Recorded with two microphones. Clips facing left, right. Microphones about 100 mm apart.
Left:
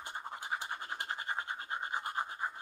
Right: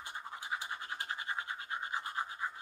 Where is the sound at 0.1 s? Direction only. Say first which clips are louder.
Left 2 dB; 40° left (ahead or behind).